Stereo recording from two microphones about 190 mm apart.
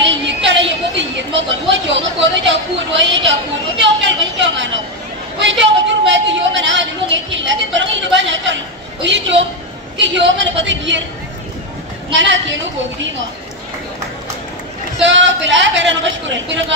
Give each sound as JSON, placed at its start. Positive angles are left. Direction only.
{"t": 0.0, "sound": "a sound", "side_deg": -75}
{"t": 3.6, "sound": "chatter", "side_deg": -70}
{"t": 5.4, "sound": "a sound", "side_deg": -75}
{"t": 9.0, "sound": "speech", "side_deg": -75}
{"t": 12.1, "sound": "speech", "side_deg": -80}
{"t": 15.0, "sound": "speech", "side_deg": -75}